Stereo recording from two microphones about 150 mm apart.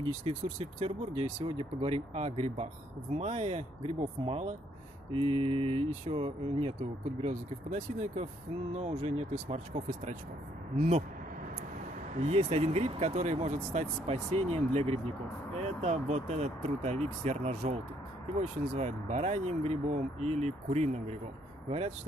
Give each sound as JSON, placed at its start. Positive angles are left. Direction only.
{"t": 0.3, "sound": "speech", "side_deg": -45}
{"t": 12.2, "sound": "speech", "side_deg": -45}